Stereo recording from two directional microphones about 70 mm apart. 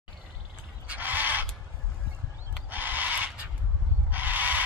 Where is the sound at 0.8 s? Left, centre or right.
Right.